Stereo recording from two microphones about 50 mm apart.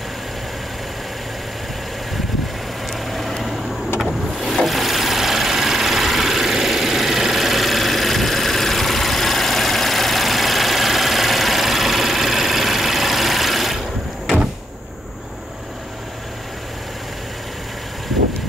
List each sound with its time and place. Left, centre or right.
2.9 s vehicle: centre